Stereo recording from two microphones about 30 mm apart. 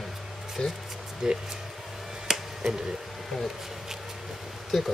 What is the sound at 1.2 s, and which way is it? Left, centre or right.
Speech, centre.